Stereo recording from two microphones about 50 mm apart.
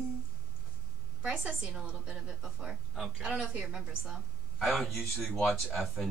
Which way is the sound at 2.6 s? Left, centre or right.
Centre.